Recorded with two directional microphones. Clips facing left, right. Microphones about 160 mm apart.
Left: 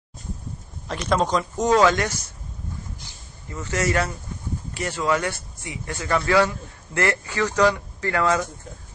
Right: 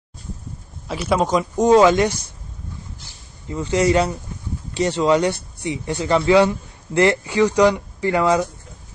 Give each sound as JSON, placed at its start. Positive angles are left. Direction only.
{"t": 0.8, "sound": "speech", "side_deg": -5}
{"t": 1.2, "sound": "speech", "side_deg": -25}
{"t": 3.4, "sound": "speech", "side_deg": -15}